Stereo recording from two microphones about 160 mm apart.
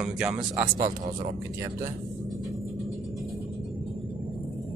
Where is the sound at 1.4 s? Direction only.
20° right (ahead or behind).